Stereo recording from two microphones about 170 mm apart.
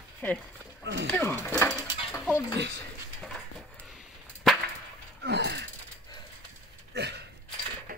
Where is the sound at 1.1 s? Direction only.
10° left (ahead or behind).